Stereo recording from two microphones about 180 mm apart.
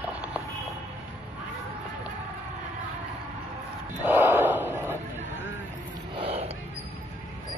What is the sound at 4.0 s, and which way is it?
Gasp, 10° right (ahead or behind).